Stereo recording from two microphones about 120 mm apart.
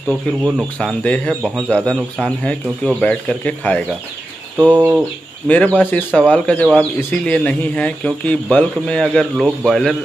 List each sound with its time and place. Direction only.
0.1 s speech: 5° left (ahead or behind)
4.6 s bird: 10° right (ahead or behind)
5.5 s speech: 10° left (ahead or behind)